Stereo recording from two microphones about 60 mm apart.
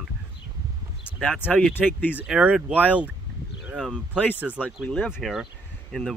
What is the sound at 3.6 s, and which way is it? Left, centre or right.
Speech, centre.